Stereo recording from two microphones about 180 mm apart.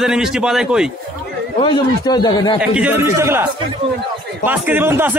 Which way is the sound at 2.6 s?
5° right (ahead or behind).